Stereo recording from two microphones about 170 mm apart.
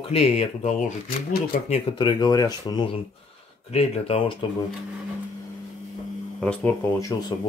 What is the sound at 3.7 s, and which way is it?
Speech, 35° left (ahead or behind).